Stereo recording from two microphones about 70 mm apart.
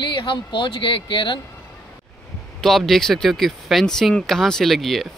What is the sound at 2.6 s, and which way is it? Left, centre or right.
Speech, centre.